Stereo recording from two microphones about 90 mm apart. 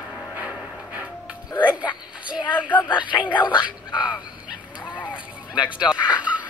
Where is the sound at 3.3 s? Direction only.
60° left (ahead or behind).